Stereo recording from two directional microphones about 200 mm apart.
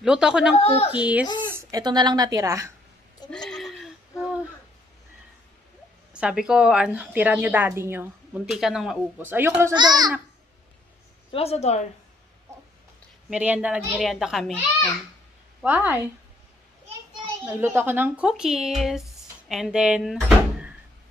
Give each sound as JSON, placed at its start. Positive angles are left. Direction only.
{"t": 0.0, "sound": "a child's voice", "side_deg": -5}
{"t": 0.6, "sound": "a woman's voice", "side_deg": 30}
{"t": 0.9, "sound": "a woman's voice", "side_deg": -5}
{"t": 1.6, "sound": "a woman's voice", "side_deg": -20}
{"t": 3.3, "sound": "a sound", "side_deg": 5}
{"t": 6.1, "sound": "a woman's voice", "side_deg": -5}
{"t": 11.3, "sound": "a woman's voice", "side_deg": 30}
{"t": 13.3, "sound": "a child's voice", "side_deg": -5}
{"t": 15.6, "sound": "a woman's voice", "side_deg": -10}
{"t": 17.5, "sound": "speech", "side_deg": -10}